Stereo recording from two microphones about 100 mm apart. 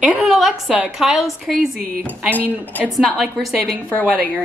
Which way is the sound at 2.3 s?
15° left (ahead or behind).